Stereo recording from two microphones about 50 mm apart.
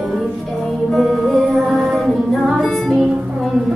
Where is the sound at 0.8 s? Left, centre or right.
Centre.